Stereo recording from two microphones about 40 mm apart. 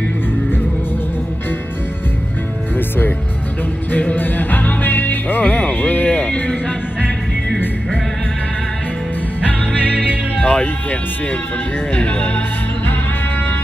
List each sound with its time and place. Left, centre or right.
4.1 s music: left
9.4 s music: left
11.9 s speech: left